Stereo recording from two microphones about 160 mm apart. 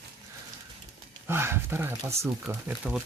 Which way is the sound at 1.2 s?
15° right (ahead or behind).